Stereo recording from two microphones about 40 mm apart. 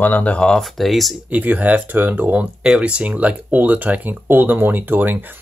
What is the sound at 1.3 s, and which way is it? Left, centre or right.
Speech, right.